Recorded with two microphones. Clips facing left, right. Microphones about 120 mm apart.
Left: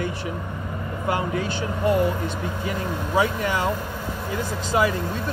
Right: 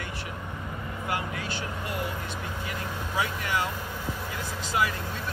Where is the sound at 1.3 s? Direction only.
25° left (ahead or behind).